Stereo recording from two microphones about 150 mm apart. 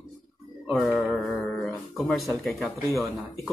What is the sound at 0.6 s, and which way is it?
Mantra, centre (ahead or behind).